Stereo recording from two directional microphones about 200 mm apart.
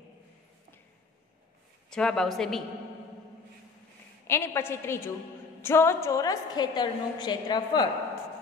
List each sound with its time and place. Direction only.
1.9 s a woman's voice: 5° left (ahead or behind)
4.3 s a woman's voice: 10° left (ahead or behind)